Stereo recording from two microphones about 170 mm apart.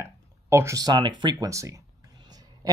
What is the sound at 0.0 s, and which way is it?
Speech, 15° right (ahead or behind).